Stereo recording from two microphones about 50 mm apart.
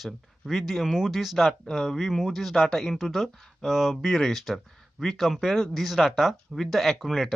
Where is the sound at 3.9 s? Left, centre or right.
Centre.